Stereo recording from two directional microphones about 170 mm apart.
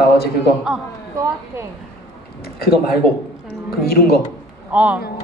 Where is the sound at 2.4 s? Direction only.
65° left (ahead or behind).